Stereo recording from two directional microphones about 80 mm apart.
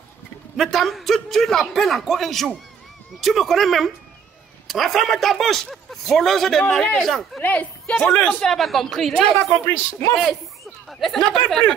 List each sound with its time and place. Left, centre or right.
0.6 s a man's voice: centre
7.4 s speech: centre
8.4 s a man's voice: centre
9.4 s speech: left
10.1 s speech: centre